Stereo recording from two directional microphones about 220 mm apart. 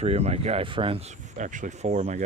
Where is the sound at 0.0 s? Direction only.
30° right (ahead or behind).